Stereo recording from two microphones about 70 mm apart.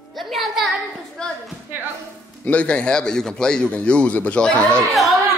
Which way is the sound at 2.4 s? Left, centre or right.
Centre.